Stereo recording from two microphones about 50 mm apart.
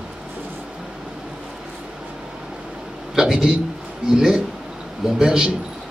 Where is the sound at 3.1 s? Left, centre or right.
Centre.